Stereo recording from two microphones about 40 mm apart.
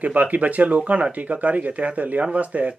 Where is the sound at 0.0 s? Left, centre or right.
Right.